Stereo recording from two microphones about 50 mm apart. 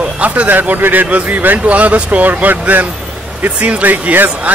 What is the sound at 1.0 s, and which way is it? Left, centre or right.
Speech, right.